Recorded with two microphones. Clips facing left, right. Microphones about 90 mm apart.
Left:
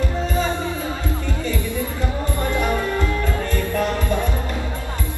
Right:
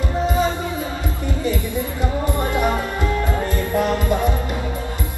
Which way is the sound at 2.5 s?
20° right (ahead or behind).